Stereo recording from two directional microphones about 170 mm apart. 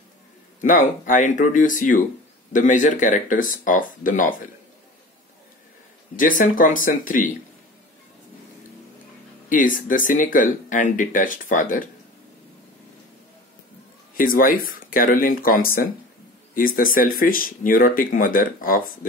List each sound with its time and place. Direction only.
0.6 s speech: 50° left (ahead or behind)
6.1 s speech: 50° left (ahead or behind)
9.8 s speech: 50° left (ahead or behind)
14.1 s speech: 55° left (ahead or behind)